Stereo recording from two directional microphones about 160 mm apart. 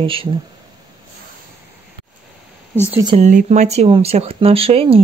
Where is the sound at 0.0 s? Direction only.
35° right (ahead or behind).